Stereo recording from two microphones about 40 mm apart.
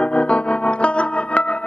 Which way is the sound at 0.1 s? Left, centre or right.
Left.